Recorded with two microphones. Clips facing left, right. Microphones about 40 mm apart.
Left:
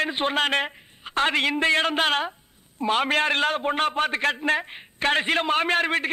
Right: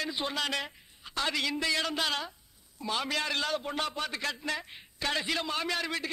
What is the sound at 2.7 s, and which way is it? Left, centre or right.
A man's voice, left.